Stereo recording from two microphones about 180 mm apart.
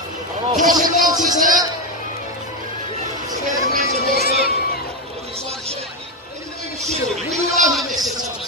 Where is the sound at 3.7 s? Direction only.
60° left (ahead or behind).